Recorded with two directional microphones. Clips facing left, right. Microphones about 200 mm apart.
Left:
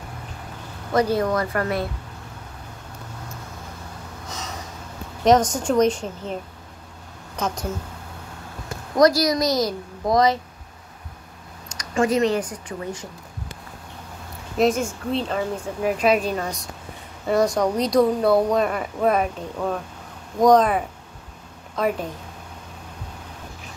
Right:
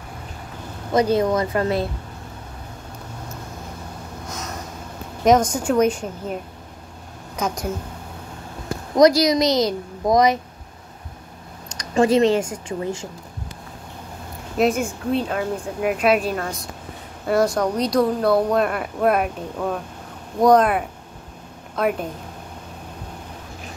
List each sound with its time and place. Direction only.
0.9 s a woman's voice: 20° right (ahead or behind)
5.2 s a woman's voice: 10° right (ahead or behind)
7.3 s a woman's voice: 10° right (ahead or behind)
8.9 s a woman's voice: 20° right (ahead or behind)
11.9 s a woman's voice: 30° right (ahead or behind)
14.6 s a woman's voice: 5° right (ahead or behind)